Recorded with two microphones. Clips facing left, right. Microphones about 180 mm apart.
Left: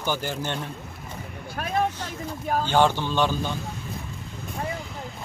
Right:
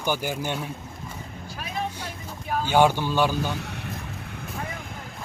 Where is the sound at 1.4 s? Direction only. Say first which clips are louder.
Left 7 dB; 55° left (ahead or behind).